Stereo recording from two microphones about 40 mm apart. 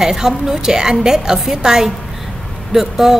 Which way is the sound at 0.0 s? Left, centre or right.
Centre.